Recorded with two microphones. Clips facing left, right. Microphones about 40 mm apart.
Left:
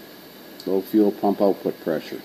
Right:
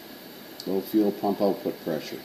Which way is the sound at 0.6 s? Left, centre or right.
Centre.